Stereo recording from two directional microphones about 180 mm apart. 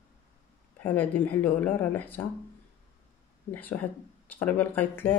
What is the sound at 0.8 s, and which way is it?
Speech, 10° left (ahead or behind).